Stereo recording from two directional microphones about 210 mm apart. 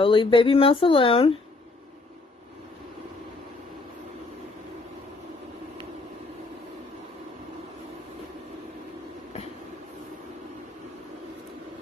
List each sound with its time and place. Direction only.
0.0 s speech: 25° left (ahead or behind)